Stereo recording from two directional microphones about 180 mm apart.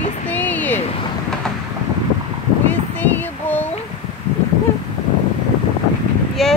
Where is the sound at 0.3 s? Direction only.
10° left (ahead or behind).